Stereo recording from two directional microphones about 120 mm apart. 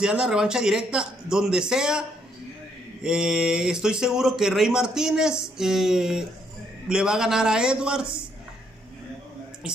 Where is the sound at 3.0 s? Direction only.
5° right (ahead or behind).